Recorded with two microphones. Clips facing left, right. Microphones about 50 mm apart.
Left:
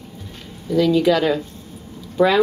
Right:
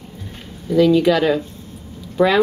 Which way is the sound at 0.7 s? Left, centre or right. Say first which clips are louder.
Right 2 dB; centre.